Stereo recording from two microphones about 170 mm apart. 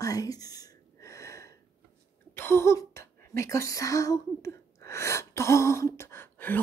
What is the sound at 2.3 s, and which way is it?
Speech, 15° left (ahead or behind).